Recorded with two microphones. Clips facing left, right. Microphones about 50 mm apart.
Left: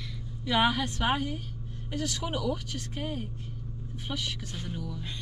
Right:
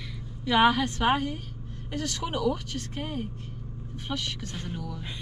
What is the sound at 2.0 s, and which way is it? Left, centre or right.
Speech, right.